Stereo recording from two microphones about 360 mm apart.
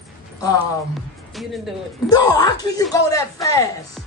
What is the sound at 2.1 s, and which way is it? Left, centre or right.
Speech, centre.